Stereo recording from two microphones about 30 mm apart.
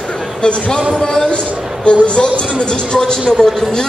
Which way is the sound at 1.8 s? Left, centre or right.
Left.